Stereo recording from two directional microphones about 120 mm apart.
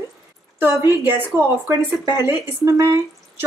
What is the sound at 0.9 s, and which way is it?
Speech, 15° right (ahead or behind).